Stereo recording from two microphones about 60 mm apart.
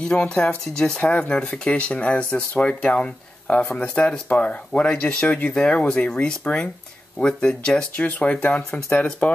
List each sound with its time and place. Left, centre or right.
0.1 s speech: centre